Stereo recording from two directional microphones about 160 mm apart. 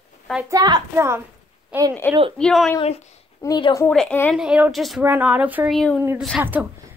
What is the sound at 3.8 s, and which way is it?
Speech, 10° left (ahead or behind).